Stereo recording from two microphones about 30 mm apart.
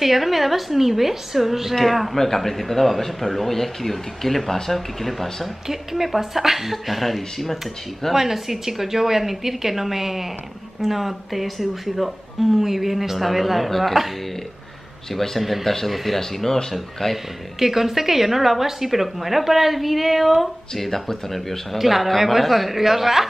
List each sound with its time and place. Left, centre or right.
0.0 s a woman's voice: centre
5.7 s a woman's voice: centre
8.1 s a woman's voice: centre
15.1 s speech: centre
17.0 s speech: centre
17.6 s speech: centre
20.7 s speech: centre
21.7 s speech: centre